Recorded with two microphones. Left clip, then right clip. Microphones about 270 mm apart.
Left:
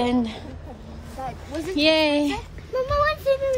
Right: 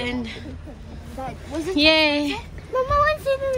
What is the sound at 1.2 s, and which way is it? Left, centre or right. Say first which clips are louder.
Speech: right 2 dB; right.